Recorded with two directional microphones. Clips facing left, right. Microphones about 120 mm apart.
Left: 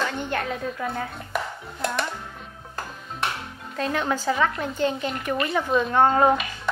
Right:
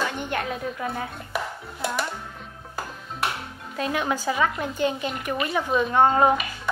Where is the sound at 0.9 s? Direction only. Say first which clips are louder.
Left 1 dB; 5° right (ahead or behind).